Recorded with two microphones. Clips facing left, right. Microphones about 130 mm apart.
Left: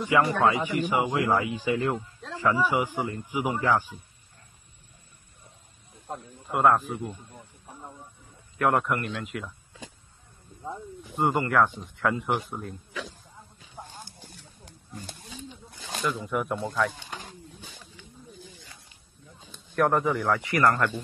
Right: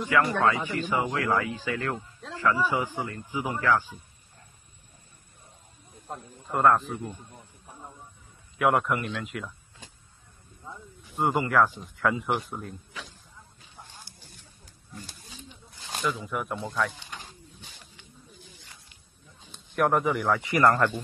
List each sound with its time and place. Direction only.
0.0 s speech: 15° left (ahead or behind)
6.1 s a man's voice: centre (ahead or behind)
8.5 s speech: centre (ahead or behind)
11.1 s speech: centre (ahead or behind)
16.0 s speech: centre (ahead or behind)
19.7 s a man's voice: 10° right (ahead or behind)
20.3 s a man's voice: 25° right (ahead or behind)